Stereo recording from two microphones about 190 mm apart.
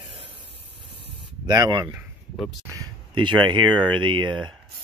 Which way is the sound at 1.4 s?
20° right (ahead or behind).